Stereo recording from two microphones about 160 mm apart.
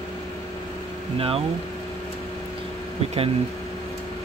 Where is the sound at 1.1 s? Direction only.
35° right (ahead or behind).